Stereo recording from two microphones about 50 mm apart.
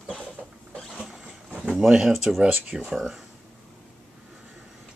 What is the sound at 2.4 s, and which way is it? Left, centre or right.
Speech, right.